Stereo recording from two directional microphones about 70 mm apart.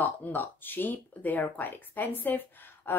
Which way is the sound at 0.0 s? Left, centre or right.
Left.